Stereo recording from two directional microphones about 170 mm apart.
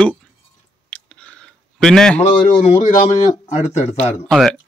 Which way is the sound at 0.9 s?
5° left (ahead or behind).